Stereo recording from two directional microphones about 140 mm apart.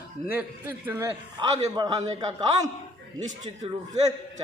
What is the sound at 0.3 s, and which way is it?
Speech, 15° right (ahead or behind).